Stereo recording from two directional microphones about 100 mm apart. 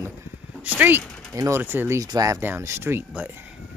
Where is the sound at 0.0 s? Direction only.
25° right (ahead or behind).